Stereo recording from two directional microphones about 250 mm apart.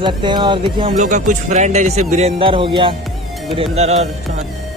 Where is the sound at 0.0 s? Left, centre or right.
Centre.